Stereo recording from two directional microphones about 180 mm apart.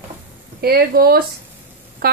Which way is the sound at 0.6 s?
60° right (ahead or behind).